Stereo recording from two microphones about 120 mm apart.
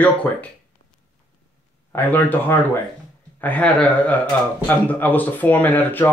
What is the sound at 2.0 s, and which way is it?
A man's voice, 15° left (ahead or behind).